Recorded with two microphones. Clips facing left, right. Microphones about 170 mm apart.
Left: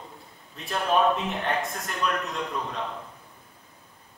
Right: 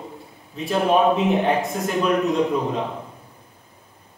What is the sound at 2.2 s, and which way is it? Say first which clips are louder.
Speech: right 12 dB; 20° right (ahead or behind).